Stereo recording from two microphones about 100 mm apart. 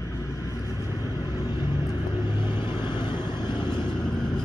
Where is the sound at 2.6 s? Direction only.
55° left (ahead or behind).